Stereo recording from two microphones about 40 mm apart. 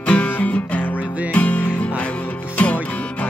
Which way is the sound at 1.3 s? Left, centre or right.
Left.